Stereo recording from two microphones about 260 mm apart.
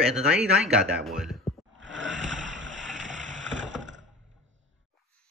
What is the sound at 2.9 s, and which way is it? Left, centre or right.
Boat, right.